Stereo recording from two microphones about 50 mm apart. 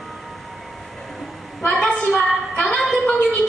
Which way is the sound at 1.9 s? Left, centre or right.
Centre.